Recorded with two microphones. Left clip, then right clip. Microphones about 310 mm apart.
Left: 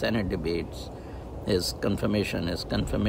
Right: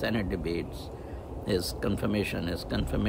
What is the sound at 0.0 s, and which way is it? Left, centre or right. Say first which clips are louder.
Speech: left 3 dB; centre.